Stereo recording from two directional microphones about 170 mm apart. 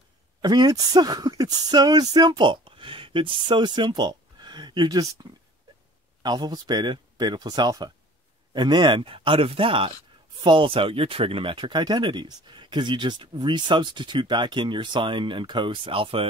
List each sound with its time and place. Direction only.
0.4 s speech: 25° right (ahead or behind)
6.2 s speech: 25° right (ahead or behind)